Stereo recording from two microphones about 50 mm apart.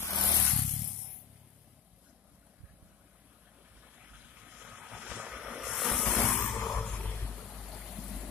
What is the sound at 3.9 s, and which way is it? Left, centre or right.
Vehicle, right.